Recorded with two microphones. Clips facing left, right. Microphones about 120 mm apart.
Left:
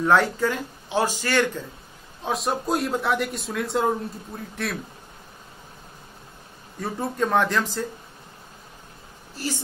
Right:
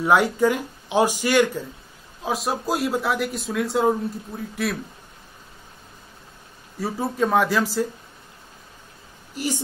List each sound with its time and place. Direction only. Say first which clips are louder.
0.0 s speech: right 2 dB; 15° right (ahead or behind)
2.2 s speech: right 1 dB; centre (ahead or behind)
6.8 s speech: right 2 dB; 5° right (ahead or behind)
9.3 s speech: right 3 dB; 15° right (ahead or behind)